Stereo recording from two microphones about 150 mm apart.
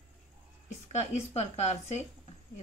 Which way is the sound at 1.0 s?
45° left (ahead or behind).